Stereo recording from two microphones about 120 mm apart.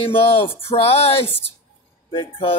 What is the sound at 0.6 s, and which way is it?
Speech, 55° left (ahead or behind).